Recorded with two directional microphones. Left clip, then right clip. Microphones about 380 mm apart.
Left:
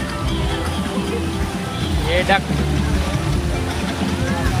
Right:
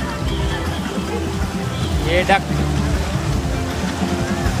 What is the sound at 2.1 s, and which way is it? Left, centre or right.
Speech, centre.